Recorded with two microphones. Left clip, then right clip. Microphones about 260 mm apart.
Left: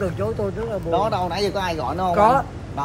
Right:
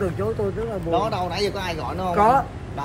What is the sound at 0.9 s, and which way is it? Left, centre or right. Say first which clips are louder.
Speech: left 2 dB; left.